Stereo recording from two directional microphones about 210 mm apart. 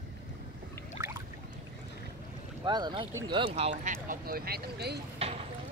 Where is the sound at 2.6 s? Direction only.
20° right (ahead or behind).